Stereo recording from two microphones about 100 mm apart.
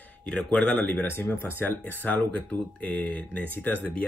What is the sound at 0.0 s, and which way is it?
Speech, 10° left (ahead or behind).